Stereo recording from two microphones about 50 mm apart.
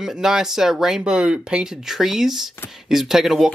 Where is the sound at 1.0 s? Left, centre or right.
Centre.